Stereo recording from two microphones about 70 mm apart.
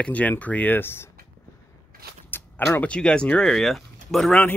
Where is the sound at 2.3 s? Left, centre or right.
Left.